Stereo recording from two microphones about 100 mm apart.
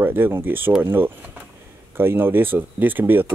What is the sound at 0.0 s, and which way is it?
Speech, 20° right (ahead or behind).